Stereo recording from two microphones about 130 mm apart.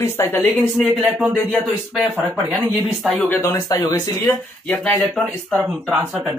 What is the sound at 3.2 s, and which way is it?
Speech, 20° left (ahead or behind).